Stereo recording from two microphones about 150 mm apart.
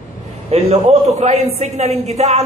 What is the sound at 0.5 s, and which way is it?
A man's voice, 45° right (ahead or behind).